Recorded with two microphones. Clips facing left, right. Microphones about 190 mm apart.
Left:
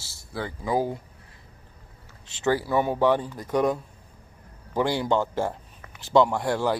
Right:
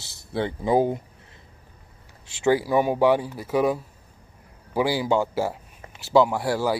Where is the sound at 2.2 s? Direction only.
10° right (ahead or behind).